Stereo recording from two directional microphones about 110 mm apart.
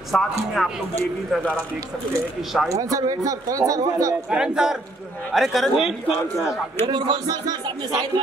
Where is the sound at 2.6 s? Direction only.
30° right (ahead or behind).